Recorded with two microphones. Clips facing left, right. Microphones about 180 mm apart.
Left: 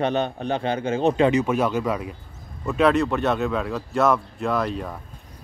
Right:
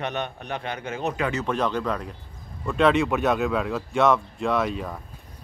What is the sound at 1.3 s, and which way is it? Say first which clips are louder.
Speech: left 4 dB; 10° left (ahead or behind).